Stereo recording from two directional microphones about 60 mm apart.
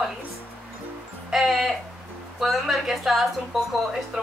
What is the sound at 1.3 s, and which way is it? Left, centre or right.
A woman's voice, centre.